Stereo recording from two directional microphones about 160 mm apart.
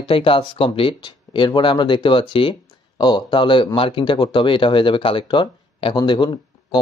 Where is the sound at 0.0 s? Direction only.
35° left (ahead or behind).